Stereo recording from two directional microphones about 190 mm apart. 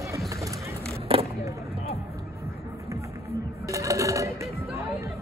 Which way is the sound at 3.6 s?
15° right (ahead or behind).